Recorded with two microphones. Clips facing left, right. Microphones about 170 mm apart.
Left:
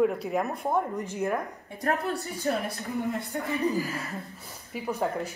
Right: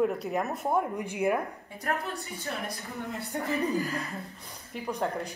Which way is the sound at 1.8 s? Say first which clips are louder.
Left 5 dB; 40° left (ahead or behind).